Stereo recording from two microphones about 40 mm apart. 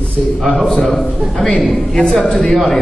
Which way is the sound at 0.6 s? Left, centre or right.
Centre.